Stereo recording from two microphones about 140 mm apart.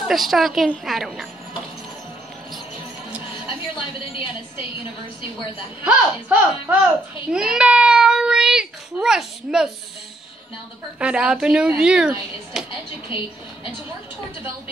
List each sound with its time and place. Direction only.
0.1 s speech: centre (ahead or behind)
3.4 s a woman's voice: 40° left (ahead or behind)
5.9 s a child's voice: 10° right (ahead or behind)
11.0 s speech: 5° right (ahead or behind)